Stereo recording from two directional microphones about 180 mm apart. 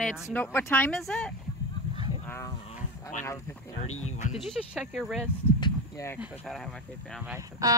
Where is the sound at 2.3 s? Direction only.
15° left (ahead or behind).